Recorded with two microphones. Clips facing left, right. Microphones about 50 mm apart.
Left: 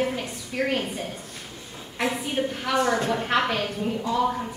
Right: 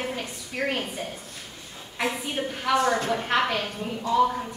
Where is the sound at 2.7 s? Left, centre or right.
Left.